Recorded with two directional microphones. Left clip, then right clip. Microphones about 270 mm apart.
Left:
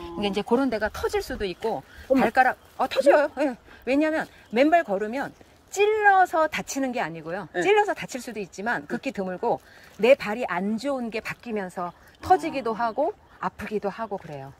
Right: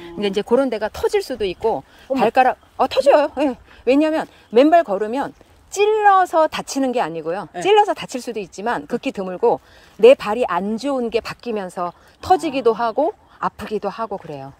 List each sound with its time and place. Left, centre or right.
0.0 s speech: centre